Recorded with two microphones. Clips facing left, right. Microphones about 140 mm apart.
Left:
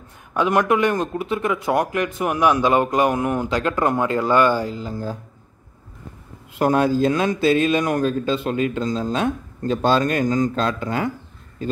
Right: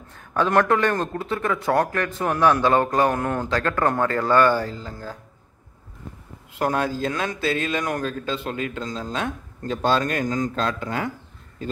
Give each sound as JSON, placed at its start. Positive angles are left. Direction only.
{"t": 0.1, "sound": "a man's voice", "side_deg": 15}
{"t": 6.6, "sound": "a man's voice", "side_deg": 15}